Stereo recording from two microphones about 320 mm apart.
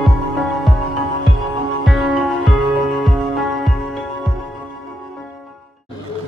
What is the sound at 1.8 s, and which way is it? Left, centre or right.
Music, centre.